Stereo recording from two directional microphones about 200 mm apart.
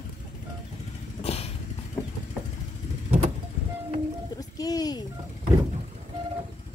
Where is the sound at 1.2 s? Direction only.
30° left (ahead or behind).